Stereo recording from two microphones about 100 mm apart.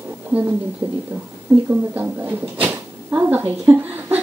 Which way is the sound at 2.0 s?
20° right (ahead or behind).